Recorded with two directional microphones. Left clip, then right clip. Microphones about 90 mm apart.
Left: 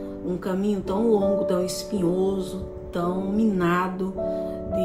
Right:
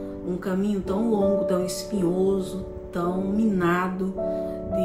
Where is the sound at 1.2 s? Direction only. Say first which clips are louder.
Even; 15° left (ahead or behind).